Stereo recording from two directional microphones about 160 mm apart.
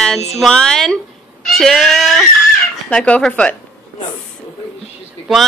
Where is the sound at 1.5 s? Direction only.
Centre (ahead or behind).